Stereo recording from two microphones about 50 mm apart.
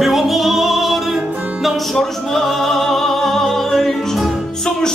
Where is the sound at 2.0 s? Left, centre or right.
Centre.